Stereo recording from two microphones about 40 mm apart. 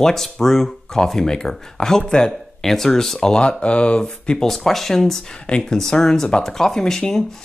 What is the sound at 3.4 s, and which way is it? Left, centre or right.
Speech, left.